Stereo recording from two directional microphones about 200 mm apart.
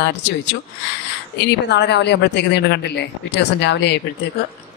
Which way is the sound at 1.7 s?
55° left (ahead or behind).